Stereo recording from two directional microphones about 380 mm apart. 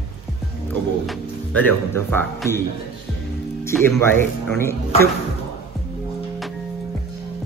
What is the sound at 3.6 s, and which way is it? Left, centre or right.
Speech, centre.